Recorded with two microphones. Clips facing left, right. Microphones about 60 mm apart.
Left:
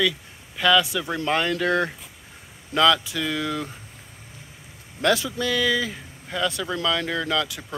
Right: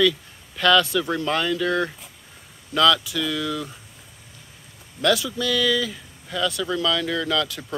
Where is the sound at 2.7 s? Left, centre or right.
Left.